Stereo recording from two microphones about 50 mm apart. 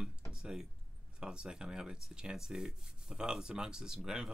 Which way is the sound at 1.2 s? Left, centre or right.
Centre.